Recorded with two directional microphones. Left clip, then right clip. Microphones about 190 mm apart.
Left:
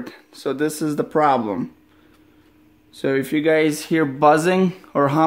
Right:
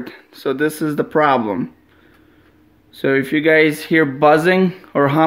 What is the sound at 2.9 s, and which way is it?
Speech, 5° left (ahead or behind).